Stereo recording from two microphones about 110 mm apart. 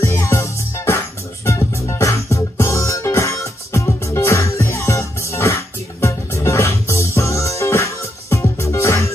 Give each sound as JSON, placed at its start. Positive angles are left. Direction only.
{"t": 0.0, "sound": "music", "side_deg": 25}